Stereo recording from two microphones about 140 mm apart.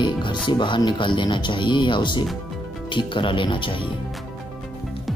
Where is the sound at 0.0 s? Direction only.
35° left (ahead or behind).